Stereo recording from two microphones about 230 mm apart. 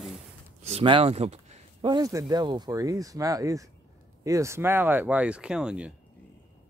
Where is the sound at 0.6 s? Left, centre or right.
Right; by 5.9 s centre.